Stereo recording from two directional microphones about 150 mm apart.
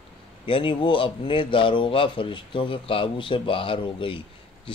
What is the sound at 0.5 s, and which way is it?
Speech, 35° left (ahead or behind).